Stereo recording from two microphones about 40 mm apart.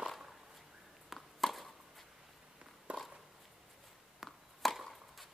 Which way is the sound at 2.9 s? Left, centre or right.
Right.